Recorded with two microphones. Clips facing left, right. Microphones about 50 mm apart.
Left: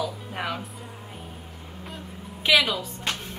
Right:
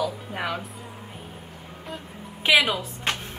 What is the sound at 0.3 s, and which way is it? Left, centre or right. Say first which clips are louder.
Speech: right 1 dB; centre.